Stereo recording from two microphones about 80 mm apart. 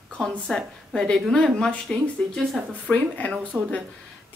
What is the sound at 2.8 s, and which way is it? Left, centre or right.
Speech, centre.